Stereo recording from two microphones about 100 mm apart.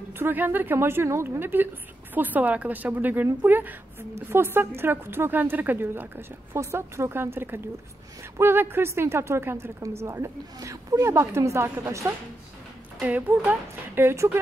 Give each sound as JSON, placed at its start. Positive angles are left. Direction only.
{"t": 0.2, "sound": "a woman's voice", "side_deg": -20}